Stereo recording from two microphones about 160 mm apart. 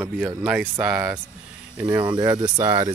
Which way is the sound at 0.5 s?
5° right (ahead or behind).